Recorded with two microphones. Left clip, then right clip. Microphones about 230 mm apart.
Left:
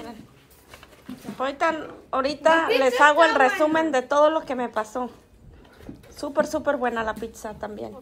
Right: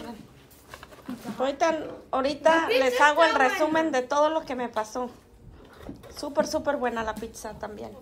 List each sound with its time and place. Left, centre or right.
1.4 s a woman's voice: centre
6.2 s a woman's voice: centre